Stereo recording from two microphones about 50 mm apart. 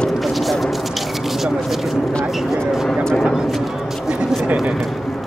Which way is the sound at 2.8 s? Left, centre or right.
Centre.